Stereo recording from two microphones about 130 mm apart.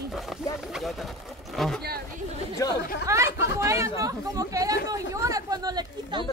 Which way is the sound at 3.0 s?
25° right (ahead or behind).